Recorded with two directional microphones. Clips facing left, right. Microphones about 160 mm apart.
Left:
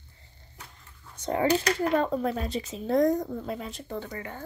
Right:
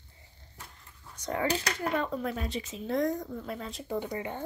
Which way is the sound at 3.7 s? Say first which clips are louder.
Right 2 dB; centre (ahead or behind).